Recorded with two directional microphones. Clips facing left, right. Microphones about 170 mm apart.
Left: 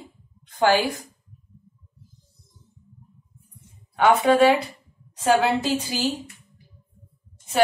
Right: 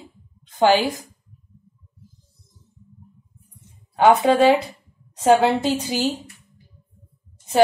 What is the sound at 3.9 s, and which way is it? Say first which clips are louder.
Speech: right 2 dB; 35° right (ahead or behind).